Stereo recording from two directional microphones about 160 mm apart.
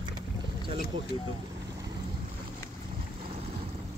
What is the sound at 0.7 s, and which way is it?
Speech, 75° left (ahead or behind).